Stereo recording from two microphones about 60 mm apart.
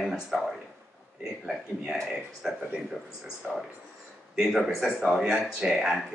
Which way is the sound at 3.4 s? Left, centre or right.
Left.